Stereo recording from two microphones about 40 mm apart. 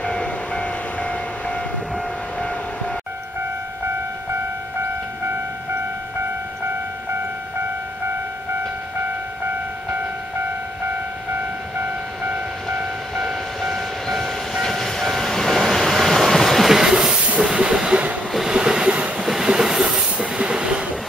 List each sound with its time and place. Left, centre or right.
0.0 s train: left
11.8 s vehicle: right
12.7 s train: centre
16.6 s a sound: centre
17.4 s train: centre
18.5 s waves: right
18.9 s train: right
19.4 s train: centre